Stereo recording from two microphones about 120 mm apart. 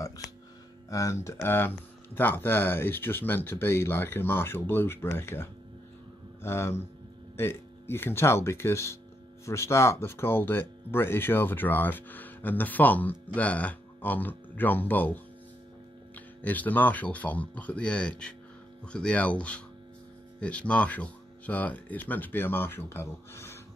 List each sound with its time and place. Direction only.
0.8 s speech: 25° left (ahead or behind)
16.4 s speech: 15° left (ahead or behind)